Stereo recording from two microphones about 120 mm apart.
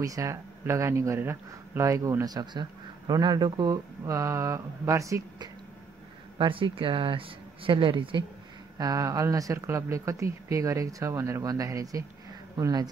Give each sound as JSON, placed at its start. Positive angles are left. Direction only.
{"t": 0.0, "sound": "speech", "side_deg": -25}
{"t": 6.3, "sound": "speech", "side_deg": -45}
{"t": 8.7, "sound": "speech", "side_deg": -30}